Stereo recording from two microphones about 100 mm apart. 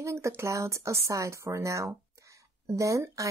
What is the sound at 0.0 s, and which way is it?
Speech, 30° right (ahead or behind).